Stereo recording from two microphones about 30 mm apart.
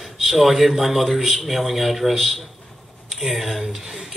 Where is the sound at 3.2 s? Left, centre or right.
Centre.